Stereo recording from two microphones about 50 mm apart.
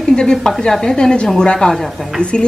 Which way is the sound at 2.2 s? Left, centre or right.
Centre.